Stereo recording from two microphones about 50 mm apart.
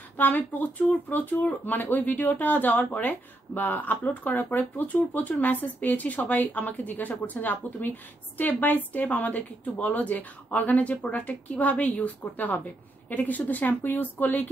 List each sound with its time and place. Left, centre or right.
0.2 s speech: left